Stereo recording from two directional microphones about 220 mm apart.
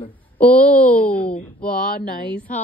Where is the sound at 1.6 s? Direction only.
40° left (ahead or behind).